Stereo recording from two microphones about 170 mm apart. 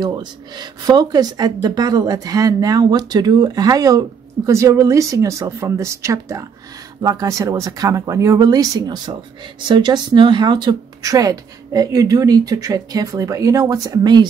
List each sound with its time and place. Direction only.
0.0 s speech: 25° right (ahead or behind)